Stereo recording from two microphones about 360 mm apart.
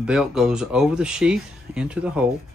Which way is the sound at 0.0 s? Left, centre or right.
Centre.